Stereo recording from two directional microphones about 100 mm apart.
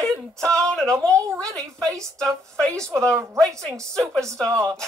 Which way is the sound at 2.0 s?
5° left (ahead or behind).